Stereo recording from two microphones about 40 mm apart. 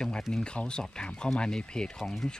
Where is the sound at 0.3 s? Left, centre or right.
Left.